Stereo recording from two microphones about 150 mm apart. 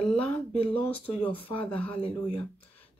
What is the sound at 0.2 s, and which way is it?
Speech, 10° left (ahead or behind).